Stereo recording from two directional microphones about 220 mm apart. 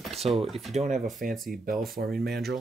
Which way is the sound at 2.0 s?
45° right (ahead or behind).